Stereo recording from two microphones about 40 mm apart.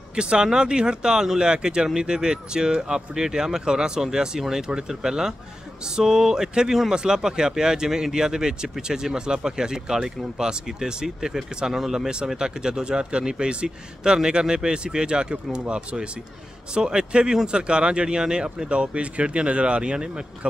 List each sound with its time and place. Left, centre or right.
0.1 s speech: right